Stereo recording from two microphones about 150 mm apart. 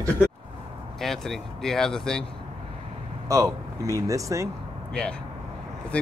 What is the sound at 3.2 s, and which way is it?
Speech, 25° right (ahead or behind).